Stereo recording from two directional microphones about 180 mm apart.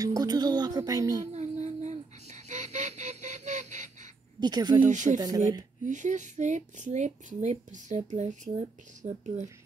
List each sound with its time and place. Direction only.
0.0 s speech: 20° right (ahead or behind)
1.3 s a sound: 40° right (ahead or behind)
4.4 s speech: 25° right (ahead or behind)
4.8 s speech: 45° right (ahead or behind)
5.2 s speech: 20° right (ahead or behind)
5.6 s speech: 45° right (ahead or behind)